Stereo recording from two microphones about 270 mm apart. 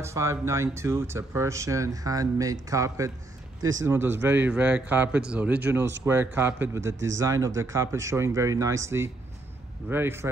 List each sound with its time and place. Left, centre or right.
0.0 s speech: centre
6.9 s speech: right
7.2 s speech: centre